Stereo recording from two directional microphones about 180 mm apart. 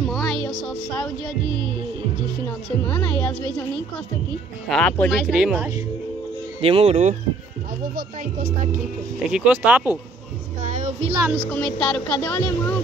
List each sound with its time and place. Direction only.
0.0 s music: centre (ahead or behind)
0.7 s speech: 5° left (ahead or behind)
2.4 s speech: 5° left (ahead or behind)
4.6 s speech: 5° left (ahead or behind)
6.6 s speech: 35° right (ahead or behind)
7.9 s speech: 50° right (ahead or behind)
9.3 s speech: 5° right (ahead or behind)
10.6 s speech: 45° right (ahead or behind)
11.1 s speech: 10° right (ahead or behind)
11.5 s speech: 5° left (ahead or behind)